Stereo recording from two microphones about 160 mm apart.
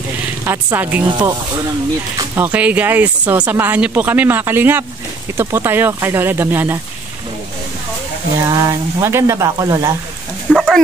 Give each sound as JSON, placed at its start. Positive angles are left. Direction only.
{"t": 0.5, "sound": "speech", "side_deg": -10}
{"t": 1.0, "sound": "speech", "side_deg": -25}
{"t": 8.5, "sound": "speech", "side_deg": -20}
{"t": 10.5, "sound": "dog", "side_deg": 0}